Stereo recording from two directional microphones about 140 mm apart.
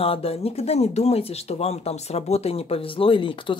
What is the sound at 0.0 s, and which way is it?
Speech, 45° left (ahead or behind).